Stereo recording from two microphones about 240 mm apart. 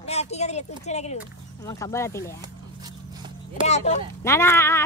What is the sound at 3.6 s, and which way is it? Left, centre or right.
Speech, left.